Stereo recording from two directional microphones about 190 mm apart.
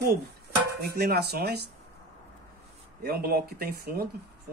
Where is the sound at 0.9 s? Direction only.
55° right (ahead or behind).